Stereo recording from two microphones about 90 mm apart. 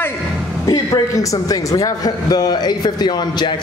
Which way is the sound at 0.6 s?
40° left (ahead or behind).